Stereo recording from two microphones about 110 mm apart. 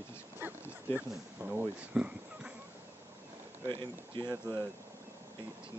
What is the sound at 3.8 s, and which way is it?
Speech, 45° right (ahead or behind).